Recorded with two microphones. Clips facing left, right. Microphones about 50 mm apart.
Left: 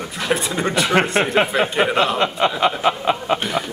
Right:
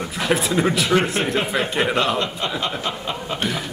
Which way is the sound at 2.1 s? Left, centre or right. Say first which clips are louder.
Left 6 dB; centre.